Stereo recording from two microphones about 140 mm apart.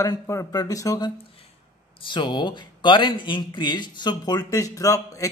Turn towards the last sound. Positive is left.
turn(degrees=25)  # may be behind; listen again after turning